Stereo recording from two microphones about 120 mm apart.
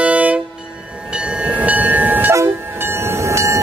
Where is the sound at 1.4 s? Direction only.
10° right (ahead or behind).